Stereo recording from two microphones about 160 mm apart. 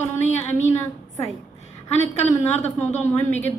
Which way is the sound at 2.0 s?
45° left (ahead or behind).